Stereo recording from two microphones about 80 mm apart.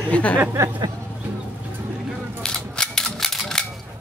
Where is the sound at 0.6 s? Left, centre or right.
Right.